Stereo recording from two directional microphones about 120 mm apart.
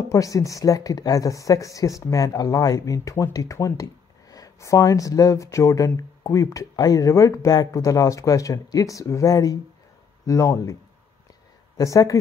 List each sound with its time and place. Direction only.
0.1 s speech: 25° left (ahead or behind)